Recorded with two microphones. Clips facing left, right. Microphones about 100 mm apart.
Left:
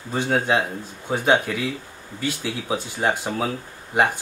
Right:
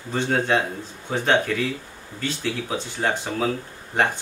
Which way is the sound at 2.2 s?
10° left (ahead or behind).